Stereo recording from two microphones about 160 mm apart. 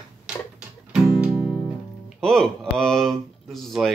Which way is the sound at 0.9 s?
5° right (ahead or behind).